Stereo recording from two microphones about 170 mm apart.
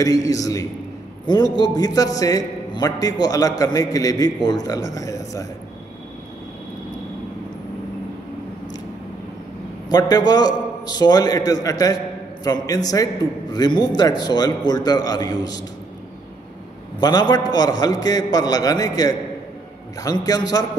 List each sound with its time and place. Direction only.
0.0 s a man's voice: 20° left (ahead or behind)
9.8 s a man's voice: 20° left (ahead or behind)
17.0 s a man's voice: 25° left (ahead or behind)